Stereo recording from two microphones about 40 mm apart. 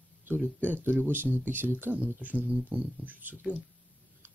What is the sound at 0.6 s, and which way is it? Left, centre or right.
Speech, right.